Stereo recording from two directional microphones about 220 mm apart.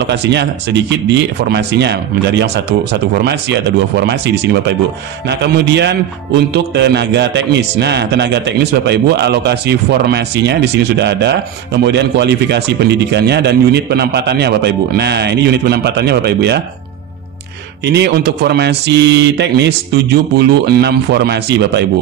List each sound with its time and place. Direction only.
0.0 s a man's voice: 50° right (ahead or behind)
17.8 s a man's voice: 50° right (ahead or behind)